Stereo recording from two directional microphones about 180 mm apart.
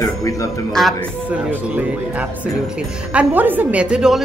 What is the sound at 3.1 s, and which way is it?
A woman's voice, 10° right (ahead or behind).